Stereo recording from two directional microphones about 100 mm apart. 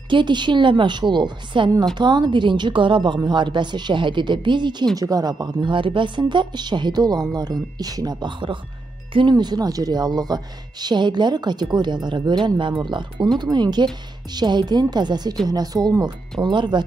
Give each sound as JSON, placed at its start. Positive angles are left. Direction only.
{"t": 0.1, "sound": "speech", "side_deg": -50}
{"t": 4.9, "sound": "speech", "side_deg": -40}